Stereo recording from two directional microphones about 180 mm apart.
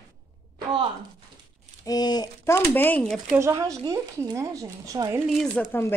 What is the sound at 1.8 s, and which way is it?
Speech, 20° left (ahead or behind).